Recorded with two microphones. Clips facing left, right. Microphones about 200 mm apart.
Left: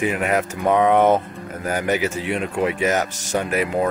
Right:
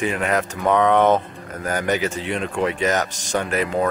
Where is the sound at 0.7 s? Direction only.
10° left (ahead or behind).